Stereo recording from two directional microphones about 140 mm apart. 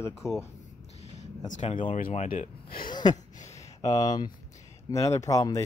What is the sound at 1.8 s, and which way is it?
Speech, 80° left.